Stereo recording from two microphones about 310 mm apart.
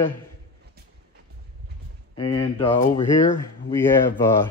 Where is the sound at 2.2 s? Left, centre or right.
Centre.